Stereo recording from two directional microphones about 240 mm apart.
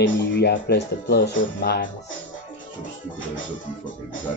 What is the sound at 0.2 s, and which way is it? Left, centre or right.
Speech, left.